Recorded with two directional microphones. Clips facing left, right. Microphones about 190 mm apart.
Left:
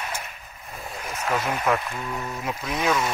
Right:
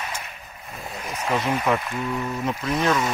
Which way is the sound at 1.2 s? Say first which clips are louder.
Right 2 dB; centre (ahead or behind).